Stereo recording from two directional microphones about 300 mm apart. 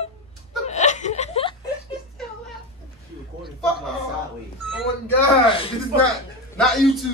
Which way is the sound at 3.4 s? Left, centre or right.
Centre.